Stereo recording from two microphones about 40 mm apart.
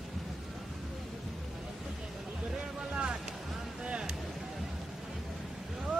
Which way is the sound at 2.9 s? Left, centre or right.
Right.